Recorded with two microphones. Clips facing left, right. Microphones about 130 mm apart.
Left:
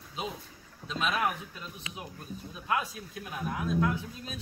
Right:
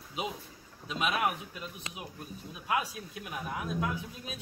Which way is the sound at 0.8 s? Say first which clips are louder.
Even; 10° right (ahead or behind).